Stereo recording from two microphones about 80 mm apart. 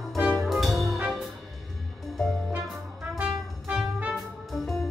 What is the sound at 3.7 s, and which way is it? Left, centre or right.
Music, centre.